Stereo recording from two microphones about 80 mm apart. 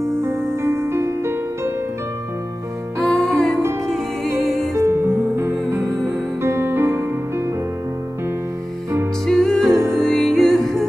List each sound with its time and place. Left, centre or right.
0.2 s music: right
3.0 s music: centre
4.7 s music: right
9.2 s music: centre